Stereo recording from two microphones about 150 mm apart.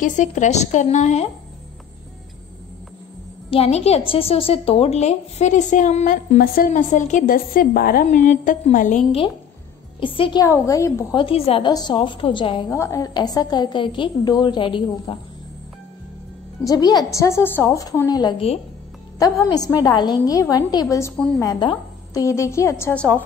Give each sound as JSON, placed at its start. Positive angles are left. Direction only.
{"t": 0.0, "sound": "speech", "side_deg": 55}
{"t": 3.4, "sound": "a woman's voice", "side_deg": 40}
{"t": 9.9, "sound": "a woman's voice", "side_deg": 35}
{"t": 10.4, "sound": "a woman's voice", "side_deg": 20}
{"t": 11.1, "sound": "a woman's voice", "side_deg": 40}
{"t": 12.6, "sound": "a woman's voice", "side_deg": 20}
{"t": 16.6, "sound": "a woman's voice", "side_deg": 25}
{"t": 18.4, "sound": "a woman's voice", "side_deg": 40}
{"t": 19.5, "sound": "a woman's voice", "side_deg": 25}
{"t": 21.5, "sound": "speech", "side_deg": 30}
{"t": 22.2, "sound": "a woman's voice", "side_deg": 20}